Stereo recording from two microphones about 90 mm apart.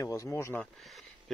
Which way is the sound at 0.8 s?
Centre (ahead or behind).